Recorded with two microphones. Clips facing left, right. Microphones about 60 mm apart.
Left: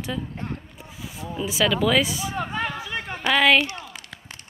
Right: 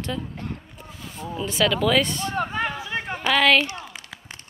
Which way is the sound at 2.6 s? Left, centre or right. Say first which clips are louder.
Right 1 dB; right.